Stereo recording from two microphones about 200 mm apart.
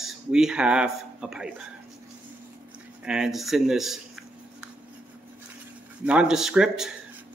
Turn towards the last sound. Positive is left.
turn(degrees=-5)  # may be behind; listen again after turning